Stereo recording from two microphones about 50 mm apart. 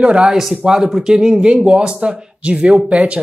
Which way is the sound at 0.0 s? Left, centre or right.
Right.